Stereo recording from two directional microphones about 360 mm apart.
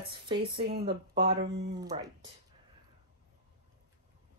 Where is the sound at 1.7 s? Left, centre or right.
Centre.